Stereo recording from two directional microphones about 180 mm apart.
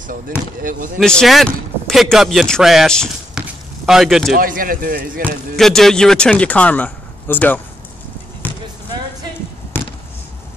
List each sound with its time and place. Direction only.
0.6 s speech: 50° right (ahead or behind)
0.9 s speech: centre (ahead or behind)
4.4 s speech: 50° right (ahead or behind)
5.6 s a man's voice: centre (ahead or behind)